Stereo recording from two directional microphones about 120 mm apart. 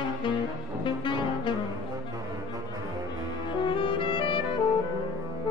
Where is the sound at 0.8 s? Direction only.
40° left (ahead or behind).